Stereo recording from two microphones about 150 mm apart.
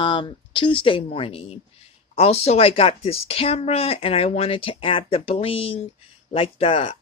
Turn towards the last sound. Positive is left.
turn(degrees=40)  # may be behind; listen again after turning